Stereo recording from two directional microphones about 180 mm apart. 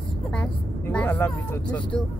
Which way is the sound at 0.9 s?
10° left (ahead or behind).